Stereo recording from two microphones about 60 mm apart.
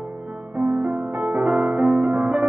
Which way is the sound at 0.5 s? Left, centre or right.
Right.